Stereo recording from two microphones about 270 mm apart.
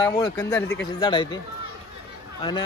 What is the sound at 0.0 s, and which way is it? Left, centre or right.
Speech, centre.